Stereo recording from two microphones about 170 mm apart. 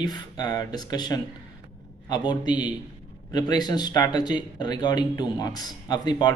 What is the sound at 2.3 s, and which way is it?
Speech, 25° left (ahead or behind).